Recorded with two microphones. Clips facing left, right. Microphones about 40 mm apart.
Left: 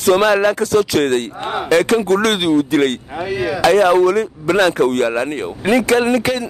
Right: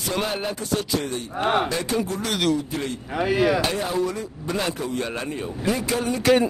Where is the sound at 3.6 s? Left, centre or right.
Left.